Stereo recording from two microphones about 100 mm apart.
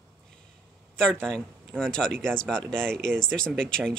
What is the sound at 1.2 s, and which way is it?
Speech, 5° left (ahead or behind).